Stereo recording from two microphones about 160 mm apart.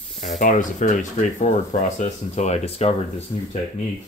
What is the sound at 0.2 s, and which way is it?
Speech, 50° left (ahead or behind).